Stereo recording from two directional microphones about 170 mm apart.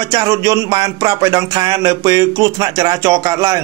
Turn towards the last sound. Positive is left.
turn(degrees=-25)  # may be behind; listen again after turning